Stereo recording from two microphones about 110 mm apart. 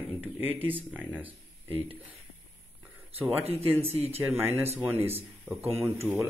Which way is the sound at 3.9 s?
65° right (ahead or behind).